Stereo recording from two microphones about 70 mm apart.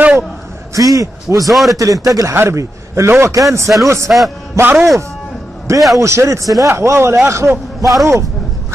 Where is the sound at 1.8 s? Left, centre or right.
Right.